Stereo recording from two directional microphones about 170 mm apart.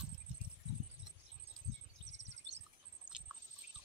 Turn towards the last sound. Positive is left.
turn(degrees=-5)  # may be behind; listen again after turning